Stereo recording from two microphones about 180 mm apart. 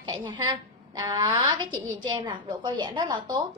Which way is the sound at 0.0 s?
25° right (ahead or behind).